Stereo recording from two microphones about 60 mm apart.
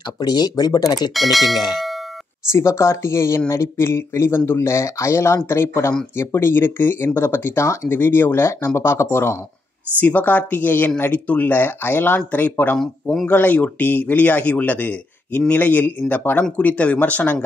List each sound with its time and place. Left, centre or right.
0.6 s speech: left
0.9 s speech: centre
2.5 s speech: left
7.6 s speech: left
7.9 s speech: left
9.9 s a man's voice: left